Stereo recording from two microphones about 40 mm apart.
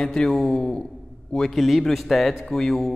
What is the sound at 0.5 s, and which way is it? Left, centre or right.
Speech, left.